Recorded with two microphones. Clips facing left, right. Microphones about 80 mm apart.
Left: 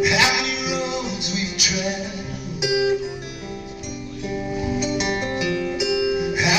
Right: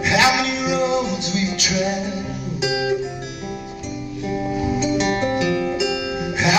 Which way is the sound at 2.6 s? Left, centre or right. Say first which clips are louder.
Left 2 dB; centre.